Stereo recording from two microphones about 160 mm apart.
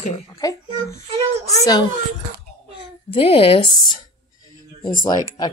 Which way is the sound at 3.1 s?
35° left (ahead or behind).